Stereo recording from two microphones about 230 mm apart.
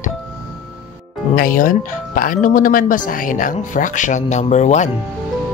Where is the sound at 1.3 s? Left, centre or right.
Left.